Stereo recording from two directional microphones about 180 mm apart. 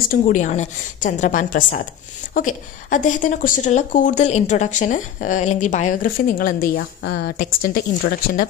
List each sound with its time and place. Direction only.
0.1 s speech: 45° left (ahead or behind)
7.0 s speech: 65° left (ahead or behind)